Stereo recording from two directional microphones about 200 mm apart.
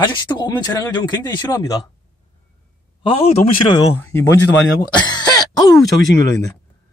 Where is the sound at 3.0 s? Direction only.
30° left (ahead or behind).